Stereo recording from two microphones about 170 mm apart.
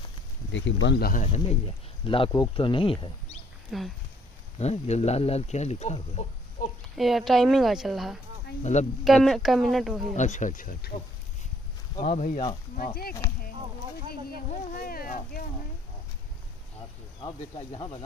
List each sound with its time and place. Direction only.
0.5 s speech: 90° left; by 1.2 s 65° left (ahead or behind)
1.2 s speech: 40° left (ahead or behind)
3.7 s a woman's voice: centre (ahead or behind)
4.6 s speech: 40° left (ahead or behind)
7.0 s a woman's voice: centre (ahead or behind)
10.1 s speech: 45° left (ahead or behind); by 11.0 s 60° left (ahead or behind)
12.0 s speech: 50° left (ahead or behind)
12.7 s speech: 60° left (ahead or behind)
14.9 s a sound: 55° left (ahead or behind)
17.2 s speech: 30° left (ahead or behind)